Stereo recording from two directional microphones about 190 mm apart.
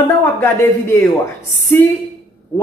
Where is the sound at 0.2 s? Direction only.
15° left (ahead or behind).